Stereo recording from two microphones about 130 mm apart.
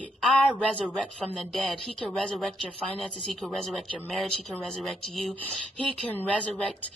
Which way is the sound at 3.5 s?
5° left (ahead or behind).